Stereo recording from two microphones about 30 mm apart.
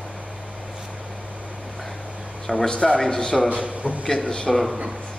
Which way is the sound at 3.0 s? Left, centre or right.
Centre.